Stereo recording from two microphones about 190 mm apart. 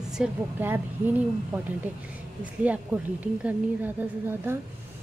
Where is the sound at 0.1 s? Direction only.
5° right (ahead or behind).